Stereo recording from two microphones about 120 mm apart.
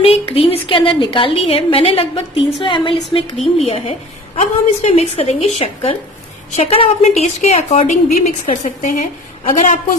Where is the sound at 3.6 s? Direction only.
60° left (ahead or behind).